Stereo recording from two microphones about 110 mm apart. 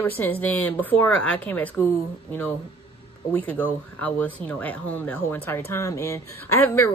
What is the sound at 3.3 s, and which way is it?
Speech, 15° left (ahead or behind).